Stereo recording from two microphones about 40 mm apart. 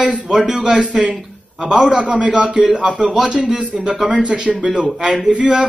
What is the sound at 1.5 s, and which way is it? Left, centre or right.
Speech, centre.